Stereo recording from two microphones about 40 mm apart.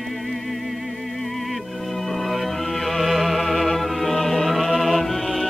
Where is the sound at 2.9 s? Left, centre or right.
Centre.